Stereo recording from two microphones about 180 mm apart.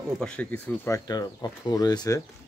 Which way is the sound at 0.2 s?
5° left (ahead or behind).